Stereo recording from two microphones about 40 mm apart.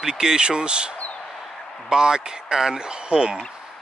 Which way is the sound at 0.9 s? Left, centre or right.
Left.